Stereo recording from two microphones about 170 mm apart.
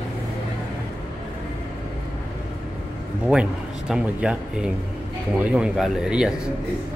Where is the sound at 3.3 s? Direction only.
5° right (ahead or behind).